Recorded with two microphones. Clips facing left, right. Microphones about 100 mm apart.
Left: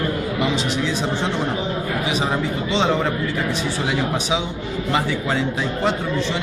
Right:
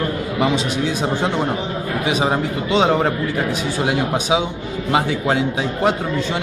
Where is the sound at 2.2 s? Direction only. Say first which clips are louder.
Right 3 dB; 50° right (ahead or behind).